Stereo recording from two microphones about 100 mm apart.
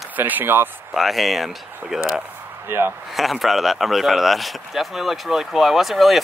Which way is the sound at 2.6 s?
20° right (ahead or behind).